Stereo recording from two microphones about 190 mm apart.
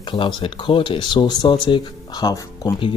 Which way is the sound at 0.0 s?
25° left (ahead or behind).